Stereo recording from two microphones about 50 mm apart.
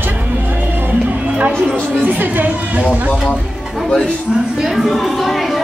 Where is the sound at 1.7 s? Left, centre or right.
Right.